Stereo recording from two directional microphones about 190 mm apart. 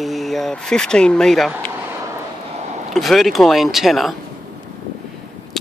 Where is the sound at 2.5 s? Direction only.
35° right (ahead or behind).